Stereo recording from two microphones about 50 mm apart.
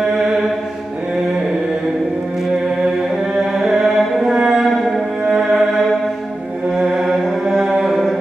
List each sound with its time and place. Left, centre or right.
0.1 s mantra: centre
3.3 s music: centre
6.7 s mantra: centre